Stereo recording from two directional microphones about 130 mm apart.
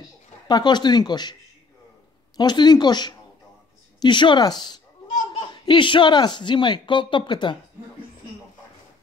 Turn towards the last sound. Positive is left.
turn(degrees=35)  # may be behind; listen again after turning